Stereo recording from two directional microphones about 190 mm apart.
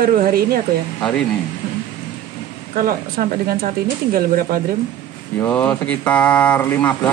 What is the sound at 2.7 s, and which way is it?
Speech, 45° right (ahead or behind).